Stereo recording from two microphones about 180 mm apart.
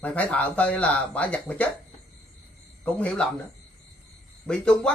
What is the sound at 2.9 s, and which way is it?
Speech, 5° left (ahead or behind).